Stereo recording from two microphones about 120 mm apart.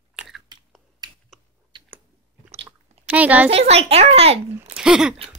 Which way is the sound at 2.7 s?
10° right (ahead or behind).